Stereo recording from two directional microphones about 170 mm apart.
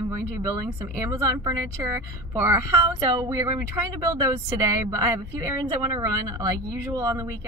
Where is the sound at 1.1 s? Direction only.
20° right (ahead or behind).